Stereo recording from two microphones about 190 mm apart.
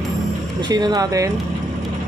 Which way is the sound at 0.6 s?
20° right (ahead or behind).